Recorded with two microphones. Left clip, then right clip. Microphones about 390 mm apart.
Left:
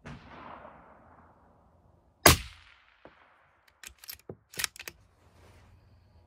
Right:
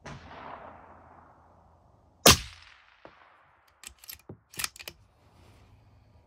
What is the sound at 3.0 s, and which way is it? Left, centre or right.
Whip, right.